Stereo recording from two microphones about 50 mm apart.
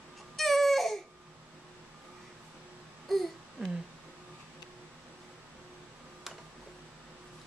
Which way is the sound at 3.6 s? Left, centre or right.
Right.